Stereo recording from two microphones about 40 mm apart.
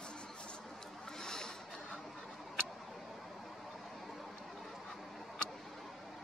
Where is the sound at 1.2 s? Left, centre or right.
Centre.